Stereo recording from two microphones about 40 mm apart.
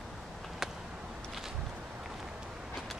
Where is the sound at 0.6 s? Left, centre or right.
Centre.